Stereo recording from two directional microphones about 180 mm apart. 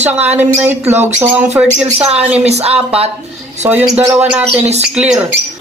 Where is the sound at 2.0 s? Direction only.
35° right (ahead or behind).